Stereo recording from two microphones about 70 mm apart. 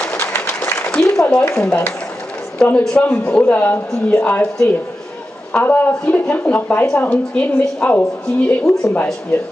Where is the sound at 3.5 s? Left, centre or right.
Left.